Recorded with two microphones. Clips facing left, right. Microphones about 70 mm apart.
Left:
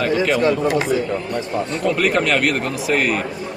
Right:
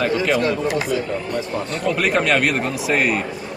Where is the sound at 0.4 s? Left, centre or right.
Left.